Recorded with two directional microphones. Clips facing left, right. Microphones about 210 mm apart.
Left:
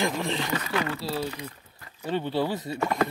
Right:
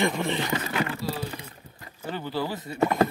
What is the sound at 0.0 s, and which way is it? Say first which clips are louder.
Speech: right 2 dB; centre (ahead or behind).